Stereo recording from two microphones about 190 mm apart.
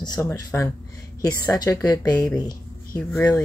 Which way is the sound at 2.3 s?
20° left (ahead or behind).